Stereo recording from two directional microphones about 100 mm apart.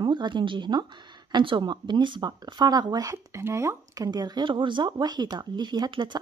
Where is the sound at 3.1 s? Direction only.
25° right (ahead or behind).